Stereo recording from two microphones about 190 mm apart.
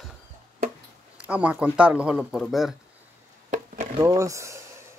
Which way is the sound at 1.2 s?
5° right (ahead or behind).